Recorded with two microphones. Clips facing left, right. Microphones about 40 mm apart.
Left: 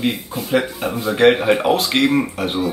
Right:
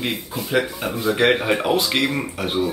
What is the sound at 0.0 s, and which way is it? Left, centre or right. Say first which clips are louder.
Speech: left 4 dB; centre.